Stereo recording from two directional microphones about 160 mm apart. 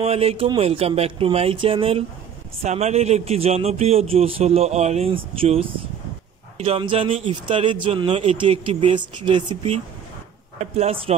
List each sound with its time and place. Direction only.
0.0 s speech: 40° right (ahead or behind)
6.6 s speech: 35° right (ahead or behind)